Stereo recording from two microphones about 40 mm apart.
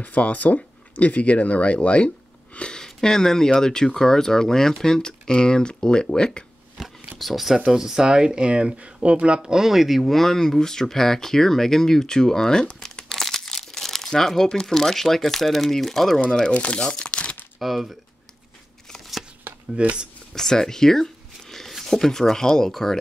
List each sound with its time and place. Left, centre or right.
0.0 s speech: left
2.7 s speech: centre
6.8 s a sound: centre
7.2 s speech: centre; by 9.4 s right
9.4 s speech: centre; by 13.0 s left
13.1 s crumpling: centre
14.1 s speech: centre
16.5 s speech: left
16.8 s crumpling: left
17.6 s speech: centre
19.7 s speech: right
20.3 s speech: centre